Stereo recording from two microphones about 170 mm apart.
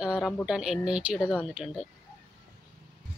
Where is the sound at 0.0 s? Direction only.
5° right (ahead or behind).